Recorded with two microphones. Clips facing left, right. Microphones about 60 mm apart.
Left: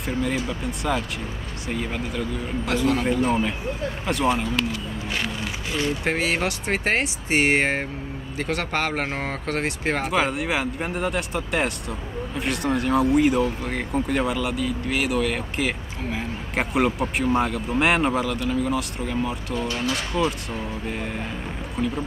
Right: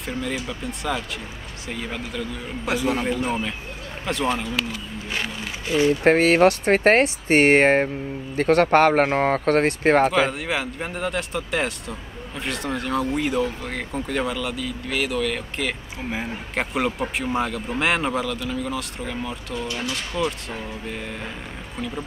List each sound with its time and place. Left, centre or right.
0.0 s speech: centre
2.8 s speech: centre
6.0 s speech: right
10.1 s speech: centre
19.7 s speech: left
20.9 s speech: centre